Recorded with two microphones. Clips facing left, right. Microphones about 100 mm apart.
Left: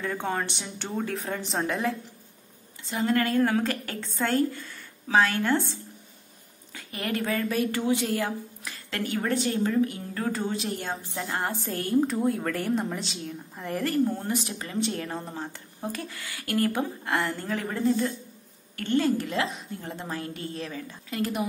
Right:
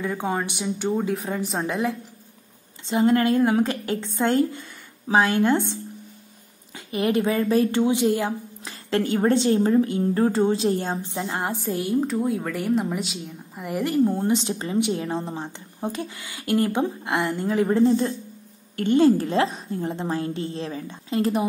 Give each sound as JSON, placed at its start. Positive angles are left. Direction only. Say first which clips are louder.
{"t": 0.0, "sound": "a woman's voice", "louder": "right 3 dB", "side_deg": -10}
{"t": 2.9, "sound": "a woman's voice", "louder": "right 6 dB", "side_deg": -25}
{"t": 11.3, "sound": "speech", "louder": "right 3 dB", "side_deg": -15}
{"t": 11.9, "sound": "a woman's voice", "louder": "even", "side_deg": 0}